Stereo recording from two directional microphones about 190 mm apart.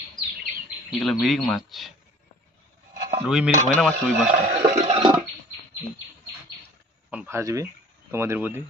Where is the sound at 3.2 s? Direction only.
5° right (ahead or behind).